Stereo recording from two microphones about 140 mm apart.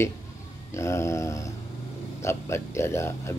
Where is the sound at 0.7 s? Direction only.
20° left (ahead or behind).